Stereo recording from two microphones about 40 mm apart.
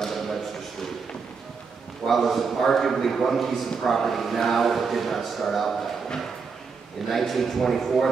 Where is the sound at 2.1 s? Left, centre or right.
Centre.